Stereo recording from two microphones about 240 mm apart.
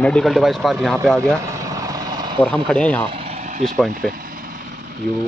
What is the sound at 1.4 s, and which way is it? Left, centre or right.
Vehicle, centre.